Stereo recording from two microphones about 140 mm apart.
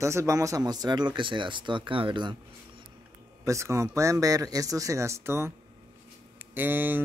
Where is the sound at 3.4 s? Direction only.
20° right (ahead or behind).